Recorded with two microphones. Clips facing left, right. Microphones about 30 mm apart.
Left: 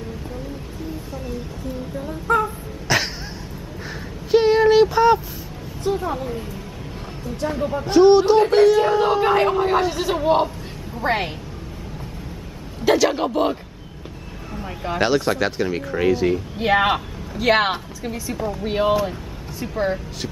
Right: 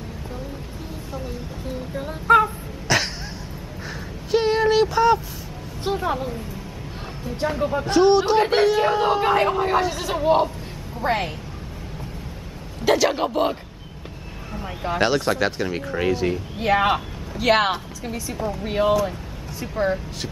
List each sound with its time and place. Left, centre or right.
2.0 s a sound: right
2.9 s a sound: centre
4.3 s a sound: centre
5.9 s a woman's voice: right
7.5 s speech: centre
7.8 s speech: centre
8.4 s speech: centre
12.8 s speech: centre
16.6 s speech: centre